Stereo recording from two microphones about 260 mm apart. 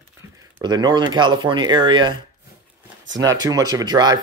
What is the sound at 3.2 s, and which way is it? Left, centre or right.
Speech, centre.